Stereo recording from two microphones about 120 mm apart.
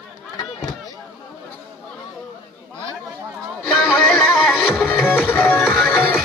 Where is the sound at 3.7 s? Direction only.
5° left (ahead or behind).